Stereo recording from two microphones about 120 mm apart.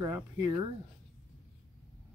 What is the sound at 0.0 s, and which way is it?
Speech, 35° right (ahead or behind).